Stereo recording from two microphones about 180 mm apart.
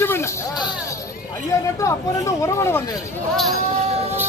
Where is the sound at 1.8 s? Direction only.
15° left (ahead or behind).